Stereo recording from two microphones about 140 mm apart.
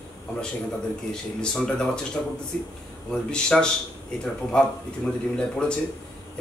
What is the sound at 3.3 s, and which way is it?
A man's voice, 5° left (ahead or behind).